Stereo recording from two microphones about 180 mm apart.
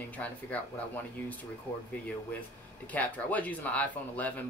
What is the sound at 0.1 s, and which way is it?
Speech, 10° left (ahead or behind).